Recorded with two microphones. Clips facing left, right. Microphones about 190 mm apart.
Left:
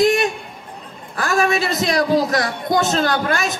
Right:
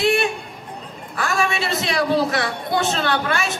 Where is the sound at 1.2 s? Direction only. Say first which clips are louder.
Left 4 dB; 40° left (ahead or behind).